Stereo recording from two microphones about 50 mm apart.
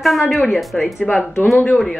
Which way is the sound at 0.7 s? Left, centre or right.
Centre.